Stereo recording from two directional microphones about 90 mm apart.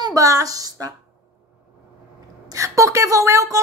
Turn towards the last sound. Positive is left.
turn(degrees=-35)  # may be behind; listen again after turning